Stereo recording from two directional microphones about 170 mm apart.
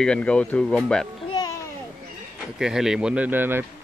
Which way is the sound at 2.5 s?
5° right (ahead or behind).